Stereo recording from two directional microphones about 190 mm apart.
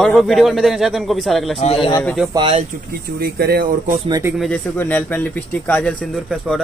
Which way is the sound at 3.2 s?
55° right (ahead or behind).